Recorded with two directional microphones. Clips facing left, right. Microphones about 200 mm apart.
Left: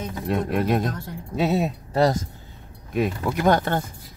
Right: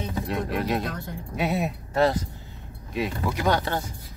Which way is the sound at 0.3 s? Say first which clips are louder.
Left 5 dB; 50° left (ahead or behind).